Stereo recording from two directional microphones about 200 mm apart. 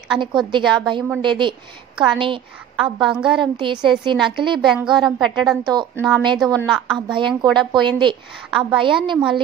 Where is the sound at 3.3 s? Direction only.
25° right (ahead or behind).